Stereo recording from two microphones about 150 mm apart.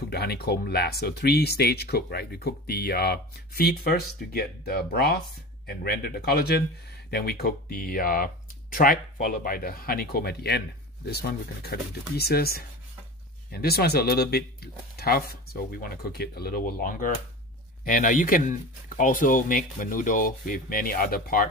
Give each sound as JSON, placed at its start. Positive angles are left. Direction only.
{"t": 0.1, "sound": "speech", "side_deg": 90}